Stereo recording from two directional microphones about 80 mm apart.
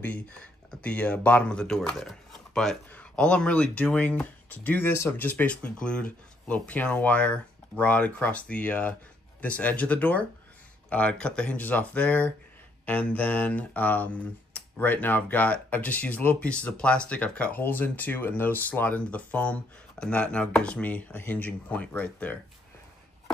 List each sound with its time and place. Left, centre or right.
0.0 s speech: centre